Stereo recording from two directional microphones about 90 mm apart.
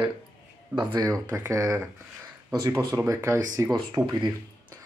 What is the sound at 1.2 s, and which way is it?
Speech, 40° right (ahead or behind).